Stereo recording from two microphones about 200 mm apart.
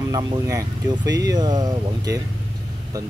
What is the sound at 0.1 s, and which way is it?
Speech, 20° right (ahead or behind).